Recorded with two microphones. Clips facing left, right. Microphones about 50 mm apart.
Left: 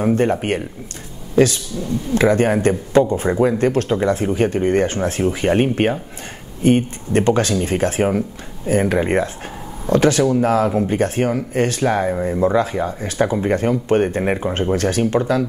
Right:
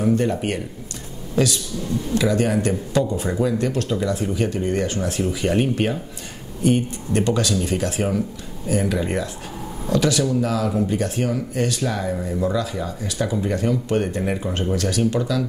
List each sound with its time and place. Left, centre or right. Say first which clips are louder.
0.0 s speech: left 3 dB; left